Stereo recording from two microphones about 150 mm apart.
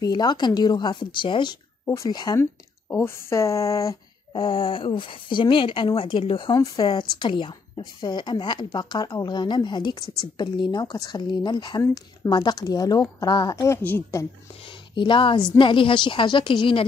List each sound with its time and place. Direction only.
0.0 s a woman's voice: 30° left (ahead or behind)
2.9 s a woman's voice: 15° left (ahead or behind)
4.3 s a woman's voice: 35° left (ahead or behind); by 14.2 s 15° left (ahead or behind)
14.5 s speech: 35° left (ahead or behind)